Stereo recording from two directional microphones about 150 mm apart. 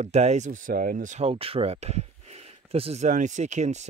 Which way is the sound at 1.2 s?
40° right (ahead or behind).